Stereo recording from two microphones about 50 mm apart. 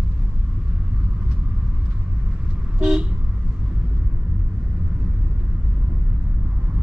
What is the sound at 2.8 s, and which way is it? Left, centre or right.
Vehicle, centre.